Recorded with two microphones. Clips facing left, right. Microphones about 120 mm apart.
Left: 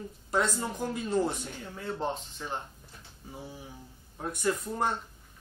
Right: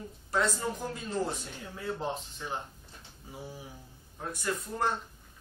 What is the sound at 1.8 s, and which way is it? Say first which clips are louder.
Speech: left 1 dB; centre (ahead or behind).